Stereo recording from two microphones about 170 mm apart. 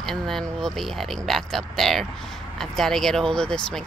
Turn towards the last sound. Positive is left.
turn(degrees=5)  # may be behind; listen again after turning